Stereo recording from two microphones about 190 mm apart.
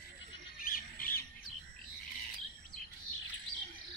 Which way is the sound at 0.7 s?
50° left (ahead or behind).